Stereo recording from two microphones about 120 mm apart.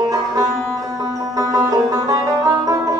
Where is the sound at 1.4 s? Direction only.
30° right (ahead or behind).